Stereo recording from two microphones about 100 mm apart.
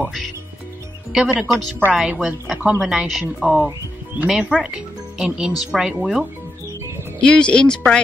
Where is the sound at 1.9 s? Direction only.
5° right (ahead or behind).